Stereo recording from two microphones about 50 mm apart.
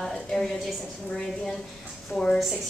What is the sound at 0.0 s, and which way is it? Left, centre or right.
Speech, centre.